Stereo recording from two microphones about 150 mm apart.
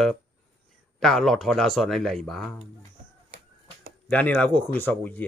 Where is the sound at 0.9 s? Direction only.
5° left (ahead or behind).